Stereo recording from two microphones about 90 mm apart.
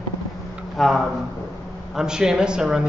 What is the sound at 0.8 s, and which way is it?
A man's voice, centre (ahead or behind).